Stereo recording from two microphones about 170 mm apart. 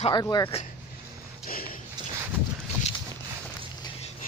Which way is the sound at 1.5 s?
60° left (ahead or behind).